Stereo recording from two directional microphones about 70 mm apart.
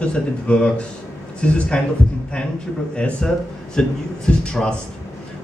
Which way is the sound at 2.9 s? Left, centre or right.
Centre.